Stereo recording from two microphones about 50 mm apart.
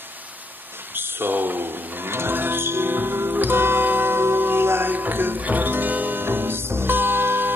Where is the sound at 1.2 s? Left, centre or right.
Right.